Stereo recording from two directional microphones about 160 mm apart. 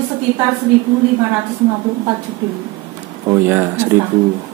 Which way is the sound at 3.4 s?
15° right (ahead or behind).